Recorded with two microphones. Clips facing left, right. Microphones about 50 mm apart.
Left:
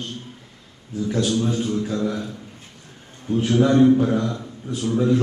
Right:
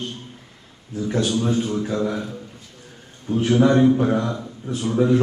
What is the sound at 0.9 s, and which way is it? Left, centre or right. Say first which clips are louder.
A man's voice: even; right.